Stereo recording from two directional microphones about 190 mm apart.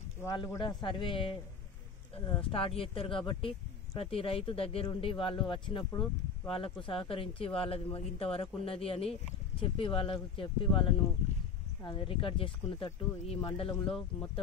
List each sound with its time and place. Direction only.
0.2 s speech: 20° left (ahead or behind)